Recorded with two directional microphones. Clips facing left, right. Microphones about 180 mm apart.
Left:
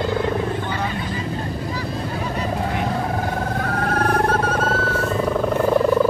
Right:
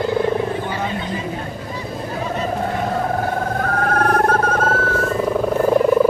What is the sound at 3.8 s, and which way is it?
Wild animals, 50° right (ahead or behind).